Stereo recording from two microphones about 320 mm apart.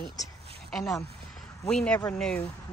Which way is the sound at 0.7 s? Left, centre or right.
Centre.